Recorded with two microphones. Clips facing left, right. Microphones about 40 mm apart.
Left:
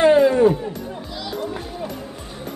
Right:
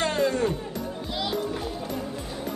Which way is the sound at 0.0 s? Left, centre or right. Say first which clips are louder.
Left 11 dB; centre.